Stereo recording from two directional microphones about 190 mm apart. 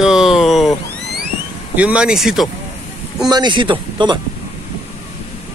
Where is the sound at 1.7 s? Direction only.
5° right (ahead or behind).